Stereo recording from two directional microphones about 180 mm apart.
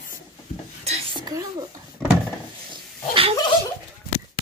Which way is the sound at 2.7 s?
30° right (ahead or behind).